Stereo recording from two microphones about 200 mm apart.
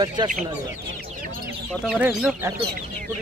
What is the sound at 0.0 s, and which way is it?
Speech, 20° right (ahead or behind).